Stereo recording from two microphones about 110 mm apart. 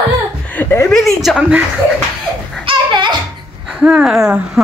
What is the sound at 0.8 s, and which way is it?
Speech, 5° left (ahead or behind).